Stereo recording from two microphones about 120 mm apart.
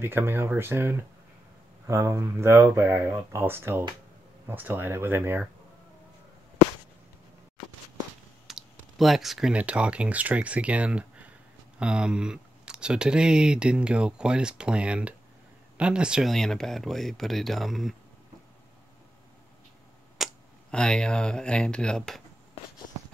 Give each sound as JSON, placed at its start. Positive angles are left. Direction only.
{"t": 0.0, "sound": "speech", "side_deg": -20}
{"t": 8.5, "sound": "speech", "side_deg": 0}
{"t": 20.2, "sound": "tick-tock", "side_deg": 0}
{"t": 20.7, "sound": "speech", "side_deg": 5}